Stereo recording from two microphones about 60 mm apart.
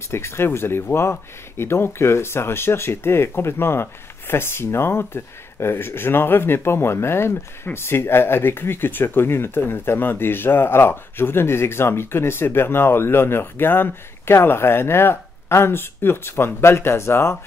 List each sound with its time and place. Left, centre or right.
0.1 s speech: left